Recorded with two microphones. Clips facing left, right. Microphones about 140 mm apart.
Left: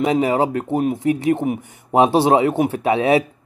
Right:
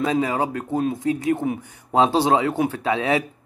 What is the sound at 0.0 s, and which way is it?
Speech, 20° left (ahead or behind).